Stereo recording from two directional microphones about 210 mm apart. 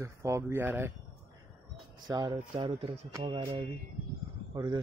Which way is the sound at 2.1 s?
20° right (ahead or behind).